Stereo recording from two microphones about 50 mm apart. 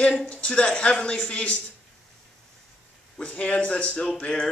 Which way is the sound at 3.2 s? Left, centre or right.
Left.